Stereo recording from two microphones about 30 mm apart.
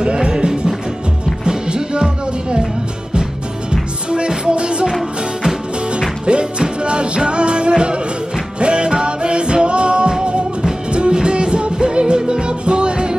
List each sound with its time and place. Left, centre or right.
0.0 s music: right
4.5 s music: right
5.9 s music: right